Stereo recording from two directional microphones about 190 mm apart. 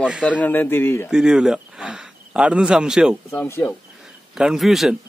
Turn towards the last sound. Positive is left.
turn(degrees=0)  # may be behind; listen again after turning